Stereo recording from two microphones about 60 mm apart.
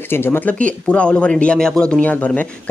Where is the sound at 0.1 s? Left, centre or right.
Left.